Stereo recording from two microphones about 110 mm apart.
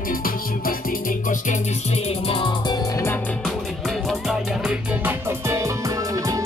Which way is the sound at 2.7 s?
35° left (ahead or behind).